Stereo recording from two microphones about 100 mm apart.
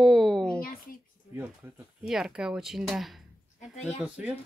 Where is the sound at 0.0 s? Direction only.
Centre (ahead or behind).